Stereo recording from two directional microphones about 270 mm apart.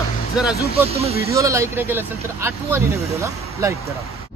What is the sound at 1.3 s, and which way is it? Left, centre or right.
Speech, centre.